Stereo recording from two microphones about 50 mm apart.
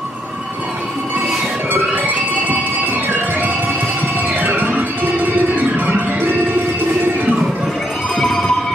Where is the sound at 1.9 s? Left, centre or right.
Right.